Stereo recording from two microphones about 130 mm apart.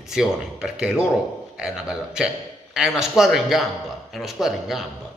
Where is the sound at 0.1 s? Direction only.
5° right (ahead or behind).